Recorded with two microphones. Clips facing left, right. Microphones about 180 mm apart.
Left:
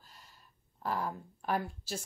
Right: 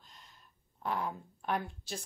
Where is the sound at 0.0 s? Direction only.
5° left (ahead or behind).